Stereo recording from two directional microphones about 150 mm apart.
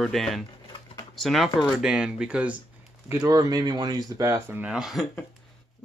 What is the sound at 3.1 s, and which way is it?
Speech, 20° right (ahead or behind).